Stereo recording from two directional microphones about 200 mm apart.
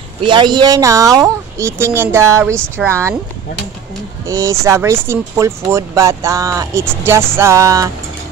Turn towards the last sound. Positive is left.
turn(degrees=-15)  # may be behind; listen again after turning